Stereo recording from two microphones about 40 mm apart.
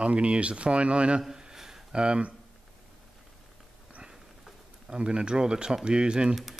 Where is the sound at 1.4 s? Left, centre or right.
Centre.